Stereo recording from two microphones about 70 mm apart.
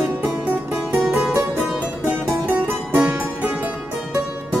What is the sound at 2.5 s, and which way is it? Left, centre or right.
Music, right.